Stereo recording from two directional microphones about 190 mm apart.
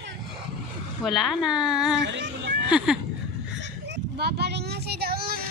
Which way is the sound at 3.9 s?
60° right (ahead or behind).